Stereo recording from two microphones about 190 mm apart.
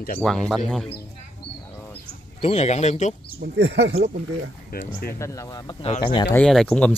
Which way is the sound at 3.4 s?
65° right (ahead or behind).